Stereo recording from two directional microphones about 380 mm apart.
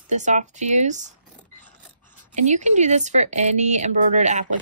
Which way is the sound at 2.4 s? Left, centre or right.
Centre.